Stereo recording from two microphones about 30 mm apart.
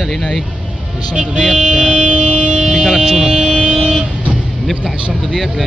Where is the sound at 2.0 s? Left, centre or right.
Right.